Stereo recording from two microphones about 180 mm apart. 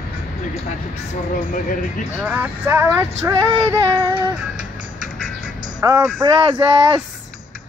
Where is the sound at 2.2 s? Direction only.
10° right (ahead or behind).